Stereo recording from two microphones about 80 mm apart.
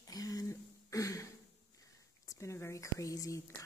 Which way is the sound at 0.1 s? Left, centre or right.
Left.